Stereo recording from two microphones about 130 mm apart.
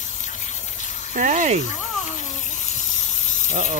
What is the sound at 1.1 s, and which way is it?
Speech, 75° right (ahead or behind).